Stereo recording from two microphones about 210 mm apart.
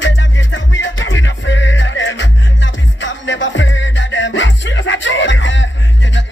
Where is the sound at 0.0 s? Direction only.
60° left (ahead or behind).